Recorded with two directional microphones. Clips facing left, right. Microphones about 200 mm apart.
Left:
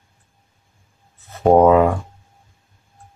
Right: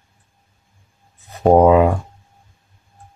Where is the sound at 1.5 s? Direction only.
15° right (ahead or behind).